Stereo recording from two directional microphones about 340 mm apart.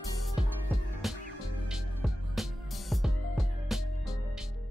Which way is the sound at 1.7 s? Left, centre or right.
Centre.